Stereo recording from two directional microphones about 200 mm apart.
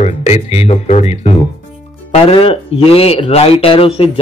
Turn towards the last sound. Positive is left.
turn(degrees=30)  # may be behind; listen again after turning